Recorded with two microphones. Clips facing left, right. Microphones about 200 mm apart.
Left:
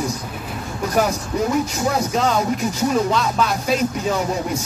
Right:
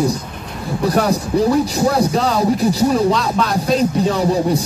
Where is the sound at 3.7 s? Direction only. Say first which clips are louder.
Right 6 dB; 35° right (ahead or behind).